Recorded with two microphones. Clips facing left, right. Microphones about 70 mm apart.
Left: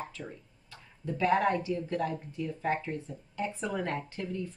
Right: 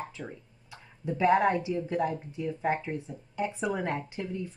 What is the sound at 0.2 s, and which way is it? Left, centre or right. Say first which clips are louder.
A woman's voice: right 2 dB; centre.